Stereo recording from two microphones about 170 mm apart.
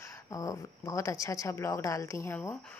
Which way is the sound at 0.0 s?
20° left (ahead or behind).